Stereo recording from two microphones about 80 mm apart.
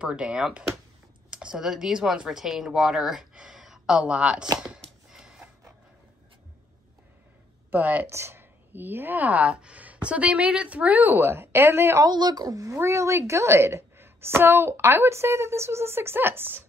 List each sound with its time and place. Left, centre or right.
0.0 s speech: centre
4.6 s a sound: centre
7.7 s speech: right
12.1 s speech: right